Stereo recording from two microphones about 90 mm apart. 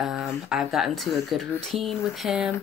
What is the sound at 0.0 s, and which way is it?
Speech, 5° right (ahead or behind).